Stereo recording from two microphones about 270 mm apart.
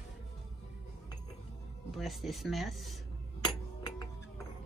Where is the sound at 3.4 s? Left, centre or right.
Centre.